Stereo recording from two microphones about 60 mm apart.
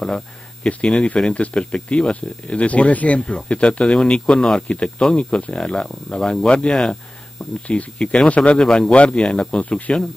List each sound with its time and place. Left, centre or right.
0.7 s speech: left
7.6 s speech: left